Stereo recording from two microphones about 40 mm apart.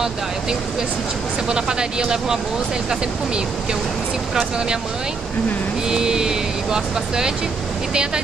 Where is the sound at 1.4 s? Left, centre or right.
Right.